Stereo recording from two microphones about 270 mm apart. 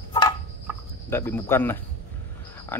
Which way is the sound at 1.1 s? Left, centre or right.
Centre.